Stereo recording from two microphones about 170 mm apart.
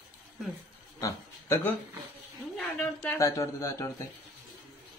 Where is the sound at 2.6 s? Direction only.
5° left (ahead or behind).